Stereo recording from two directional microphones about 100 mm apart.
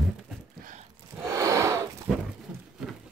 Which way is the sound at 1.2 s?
30° right (ahead or behind).